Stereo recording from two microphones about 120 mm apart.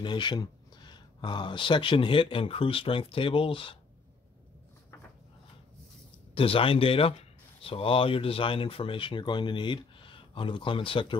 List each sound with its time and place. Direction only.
0.0 s speech: 40° left (ahead or behind)
6.3 s speech: 50° left (ahead or behind)